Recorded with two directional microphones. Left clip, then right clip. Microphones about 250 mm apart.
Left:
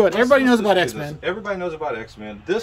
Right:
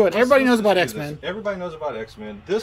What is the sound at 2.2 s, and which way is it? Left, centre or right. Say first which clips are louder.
Speech: left 1 dB; centre.